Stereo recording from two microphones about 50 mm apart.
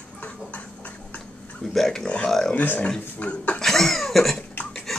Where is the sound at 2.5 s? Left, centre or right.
Left.